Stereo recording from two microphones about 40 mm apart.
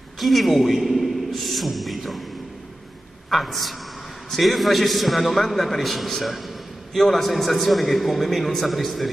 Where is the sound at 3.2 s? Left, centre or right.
Centre.